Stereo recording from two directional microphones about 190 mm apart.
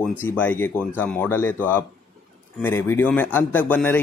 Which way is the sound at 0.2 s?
10° left (ahead or behind).